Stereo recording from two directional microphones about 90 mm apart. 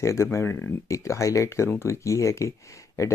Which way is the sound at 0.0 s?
35° left (ahead or behind).